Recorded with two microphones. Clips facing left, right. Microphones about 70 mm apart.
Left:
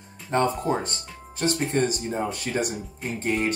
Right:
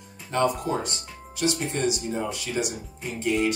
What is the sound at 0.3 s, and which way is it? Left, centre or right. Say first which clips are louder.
Speech: left 1 dB; left.